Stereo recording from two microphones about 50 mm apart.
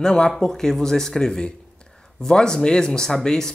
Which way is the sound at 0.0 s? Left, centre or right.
Centre.